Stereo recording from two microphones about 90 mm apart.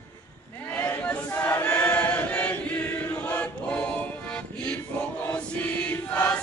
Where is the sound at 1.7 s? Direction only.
15° left (ahead or behind).